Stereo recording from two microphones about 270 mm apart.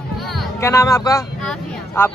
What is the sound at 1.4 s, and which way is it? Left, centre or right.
Vehicle, centre.